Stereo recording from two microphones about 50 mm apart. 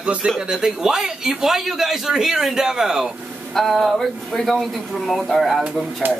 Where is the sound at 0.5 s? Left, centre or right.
Centre.